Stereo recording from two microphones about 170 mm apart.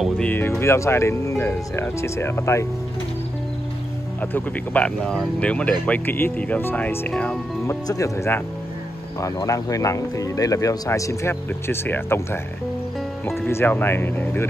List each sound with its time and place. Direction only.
0.0 s speech: 10° left (ahead or behind)
4.2 s speech: 10° left (ahead or behind)
7.6 s speech: 15° left (ahead or behind)
13.5 s speech: 15° left (ahead or behind)